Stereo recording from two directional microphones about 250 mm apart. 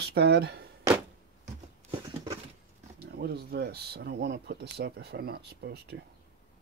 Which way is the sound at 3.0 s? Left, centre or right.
Right.